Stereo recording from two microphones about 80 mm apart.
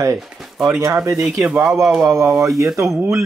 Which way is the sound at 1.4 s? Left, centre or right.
Centre.